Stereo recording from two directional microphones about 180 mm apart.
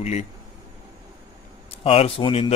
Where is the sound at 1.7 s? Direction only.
35° left (ahead or behind).